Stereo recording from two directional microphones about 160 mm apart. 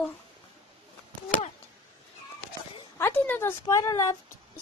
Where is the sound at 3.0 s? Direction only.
10° left (ahead or behind).